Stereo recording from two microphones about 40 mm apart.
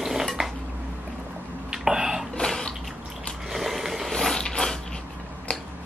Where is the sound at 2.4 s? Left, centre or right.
Centre.